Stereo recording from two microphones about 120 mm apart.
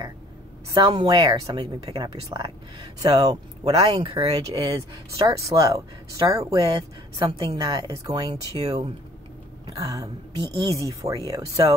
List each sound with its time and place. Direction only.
0.7 s speech: 35° right (ahead or behind)
3.7 s speech: 50° right (ahead or behind)
4.1 s speech: 30° right (ahead or behind)
6.7 s speech: 45° right (ahead or behind); by 11.7 s 30° right (ahead or behind)